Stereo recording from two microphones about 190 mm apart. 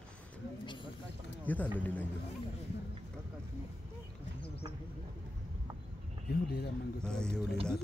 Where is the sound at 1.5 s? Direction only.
10° left (ahead or behind).